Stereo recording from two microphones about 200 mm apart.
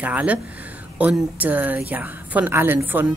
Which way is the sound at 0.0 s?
5° right (ahead or behind).